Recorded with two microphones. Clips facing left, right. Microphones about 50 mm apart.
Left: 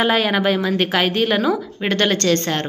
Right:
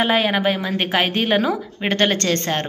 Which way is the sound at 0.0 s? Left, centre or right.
Centre.